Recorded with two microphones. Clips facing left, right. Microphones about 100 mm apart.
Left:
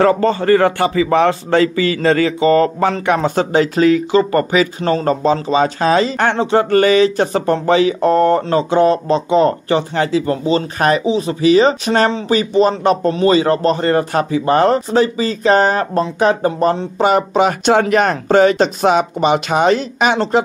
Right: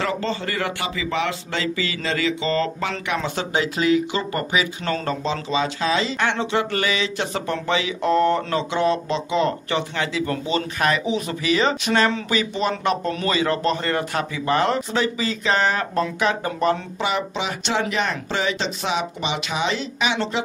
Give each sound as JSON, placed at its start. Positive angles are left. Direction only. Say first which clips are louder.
{"t": 0.2, "sound": "a man's voice", "louder": "left 13 dB", "side_deg": 50}